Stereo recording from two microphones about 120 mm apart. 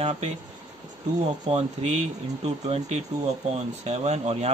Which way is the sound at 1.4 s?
65° right (ahead or behind).